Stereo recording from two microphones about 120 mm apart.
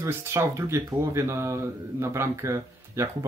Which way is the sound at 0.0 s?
20° right (ahead or behind).